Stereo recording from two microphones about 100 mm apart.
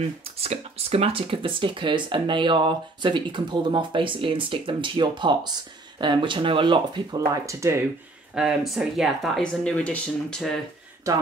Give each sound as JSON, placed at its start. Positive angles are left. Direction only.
{"t": 0.0, "sound": "speech", "side_deg": -90}
{"t": 7.4, "sound": "speech", "side_deg": -30}
{"t": 8.4, "sound": "speech", "side_deg": -5}